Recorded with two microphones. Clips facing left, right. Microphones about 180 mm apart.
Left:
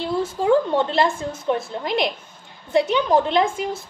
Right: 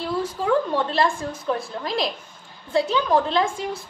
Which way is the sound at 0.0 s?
25° left (ahead or behind).